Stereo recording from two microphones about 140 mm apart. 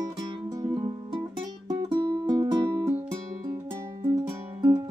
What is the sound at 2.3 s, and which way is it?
Music, 30° right (ahead or behind).